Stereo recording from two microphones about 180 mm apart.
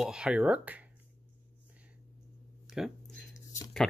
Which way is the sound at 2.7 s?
Centre (ahead or behind).